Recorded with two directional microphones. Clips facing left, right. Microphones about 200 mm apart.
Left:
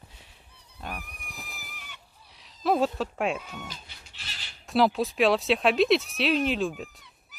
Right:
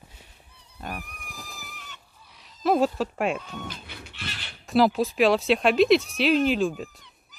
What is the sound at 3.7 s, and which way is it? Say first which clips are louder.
Goat: right 6 dB; 60° right (ahead or behind).